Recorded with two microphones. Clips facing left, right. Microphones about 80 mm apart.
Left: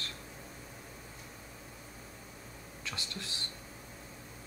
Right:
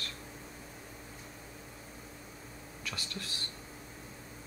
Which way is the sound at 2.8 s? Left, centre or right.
Left.